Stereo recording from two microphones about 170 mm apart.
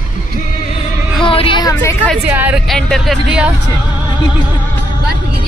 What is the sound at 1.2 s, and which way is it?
Speech, 30° left (ahead or behind).